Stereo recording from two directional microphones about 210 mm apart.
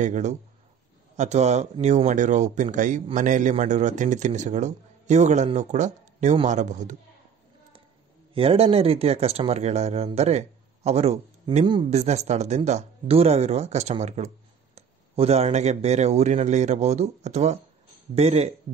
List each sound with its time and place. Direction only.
0.0 s speech: 35° right (ahead or behind)
8.4 s a man's voice: 30° right (ahead or behind)